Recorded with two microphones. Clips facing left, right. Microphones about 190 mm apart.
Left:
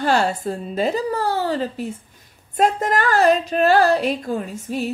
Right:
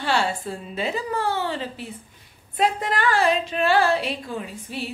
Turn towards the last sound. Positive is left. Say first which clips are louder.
# left 7 dB
turn(degrees=45)  # may be behind; listen again after turning